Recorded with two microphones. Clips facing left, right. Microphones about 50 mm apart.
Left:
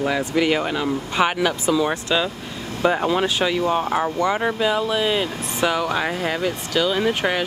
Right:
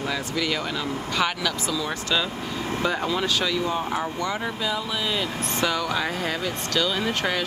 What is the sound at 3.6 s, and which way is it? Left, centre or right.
Speech, left.